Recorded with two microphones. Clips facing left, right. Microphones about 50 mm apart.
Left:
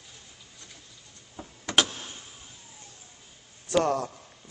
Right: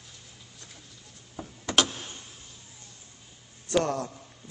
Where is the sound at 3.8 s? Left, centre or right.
Left.